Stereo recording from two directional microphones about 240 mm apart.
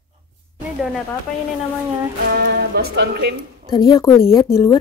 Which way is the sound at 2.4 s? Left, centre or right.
Right.